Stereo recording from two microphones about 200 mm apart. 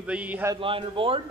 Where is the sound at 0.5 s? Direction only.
25° right (ahead or behind).